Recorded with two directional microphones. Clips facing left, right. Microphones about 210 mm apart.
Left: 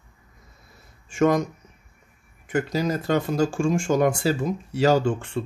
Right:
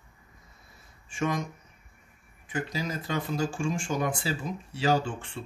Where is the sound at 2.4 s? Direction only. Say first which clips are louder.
Left 9 dB; 70° left (ahead or behind).